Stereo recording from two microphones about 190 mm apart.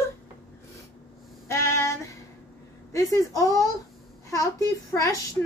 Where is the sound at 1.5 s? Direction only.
15° left (ahead or behind).